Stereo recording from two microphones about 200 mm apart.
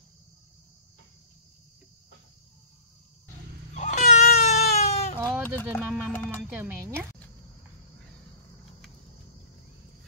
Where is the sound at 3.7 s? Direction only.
35° left (ahead or behind).